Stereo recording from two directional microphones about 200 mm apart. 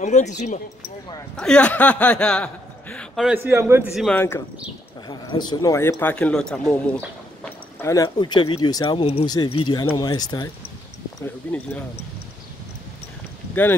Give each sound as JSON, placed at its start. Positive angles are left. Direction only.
{"t": 0.0, "sound": "speech", "side_deg": 35}
{"t": 1.3, "sound": "speech", "side_deg": 5}
{"t": 3.3, "sound": "speech", "side_deg": -10}
{"t": 3.9, "sound": "speech", "side_deg": 5}
{"t": 5.5, "sound": "speech", "side_deg": 15}
{"t": 11.1, "sound": "speech", "side_deg": 10}